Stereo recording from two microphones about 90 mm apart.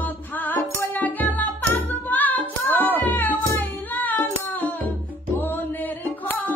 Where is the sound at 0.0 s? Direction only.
20° left (ahead or behind).